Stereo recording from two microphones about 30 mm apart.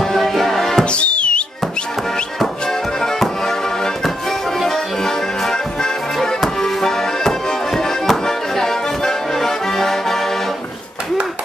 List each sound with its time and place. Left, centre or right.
0.0 s music: centre
0.9 s music: left
3.2 s music: centre
6.6 s music: centre